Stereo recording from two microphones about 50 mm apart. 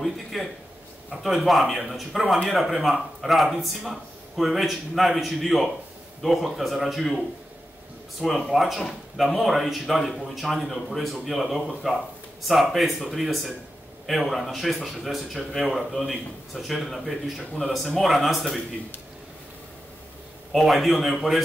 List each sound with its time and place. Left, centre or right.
0.0 s a sound: centre
1.1 s speech: centre
17.4 s speech: centre
18.0 s speech: centre
20.5 s speech: centre